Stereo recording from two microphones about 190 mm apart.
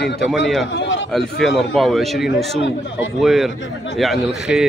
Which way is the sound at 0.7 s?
75° left (ahead or behind).